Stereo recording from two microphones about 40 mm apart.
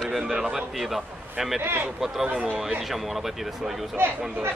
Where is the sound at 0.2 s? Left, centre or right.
Centre.